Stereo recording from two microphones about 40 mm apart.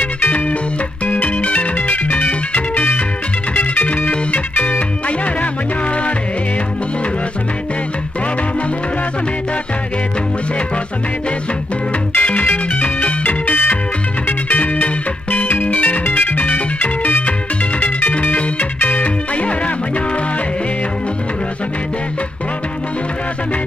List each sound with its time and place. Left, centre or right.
0.0 s music: left
12.1 s music: left
18.1 s music: left